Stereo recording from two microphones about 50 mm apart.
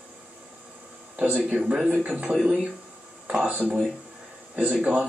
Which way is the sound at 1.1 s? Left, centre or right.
Right.